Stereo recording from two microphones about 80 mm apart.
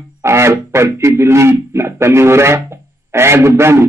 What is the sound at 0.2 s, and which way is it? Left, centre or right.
Speech, right.